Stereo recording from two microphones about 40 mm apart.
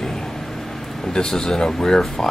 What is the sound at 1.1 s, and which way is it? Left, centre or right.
Speech, centre.